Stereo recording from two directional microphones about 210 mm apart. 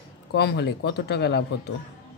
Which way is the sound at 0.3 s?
55° left (ahead or behind).